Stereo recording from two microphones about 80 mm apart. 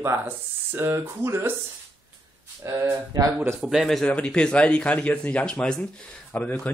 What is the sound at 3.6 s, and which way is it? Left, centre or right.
Speech, centre.